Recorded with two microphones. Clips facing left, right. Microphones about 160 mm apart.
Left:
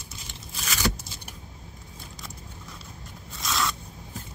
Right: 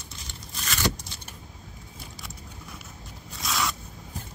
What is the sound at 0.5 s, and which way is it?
Vehicle, 5° left (ahead or behind).